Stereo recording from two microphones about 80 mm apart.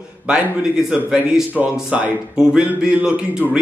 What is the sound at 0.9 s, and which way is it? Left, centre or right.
A man's voice, centre.